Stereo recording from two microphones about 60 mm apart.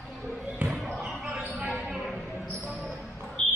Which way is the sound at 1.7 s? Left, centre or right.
Centre.